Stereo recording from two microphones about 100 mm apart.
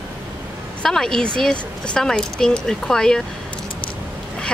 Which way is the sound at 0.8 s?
5° left (ahead or behind).